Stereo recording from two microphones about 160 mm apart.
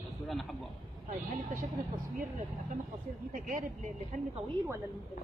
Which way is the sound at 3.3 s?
55° right (ahead or behind).